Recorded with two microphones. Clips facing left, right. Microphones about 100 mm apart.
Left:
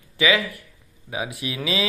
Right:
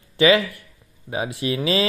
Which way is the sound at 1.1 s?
30° right (ahead or behind).